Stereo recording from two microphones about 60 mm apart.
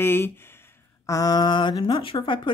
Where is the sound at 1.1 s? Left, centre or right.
Left.